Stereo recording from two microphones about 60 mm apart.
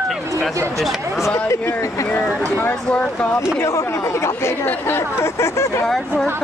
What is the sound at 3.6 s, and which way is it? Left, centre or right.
Speech, left.